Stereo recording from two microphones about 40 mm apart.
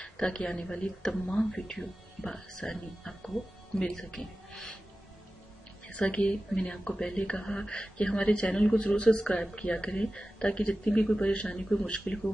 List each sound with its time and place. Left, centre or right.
0.0 s speech: left
6.0 s speech: left